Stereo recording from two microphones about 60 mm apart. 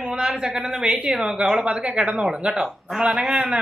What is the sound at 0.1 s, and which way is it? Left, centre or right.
A woman's voice, centre.